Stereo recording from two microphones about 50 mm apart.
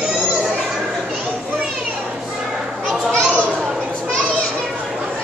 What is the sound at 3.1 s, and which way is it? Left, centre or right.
Children playing, left.